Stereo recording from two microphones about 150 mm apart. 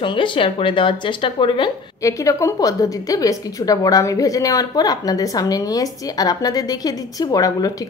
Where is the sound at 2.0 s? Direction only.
20° left (ahead or behind).